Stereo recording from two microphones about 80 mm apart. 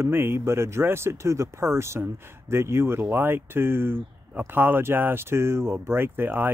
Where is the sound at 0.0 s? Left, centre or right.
Right.